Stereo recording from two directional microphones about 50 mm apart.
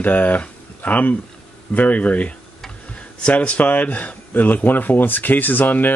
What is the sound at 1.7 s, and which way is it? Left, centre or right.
Mantra, left.